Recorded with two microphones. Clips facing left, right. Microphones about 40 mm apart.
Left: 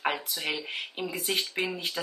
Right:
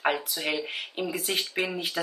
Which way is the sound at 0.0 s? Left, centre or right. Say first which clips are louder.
Right 3 dB; centre.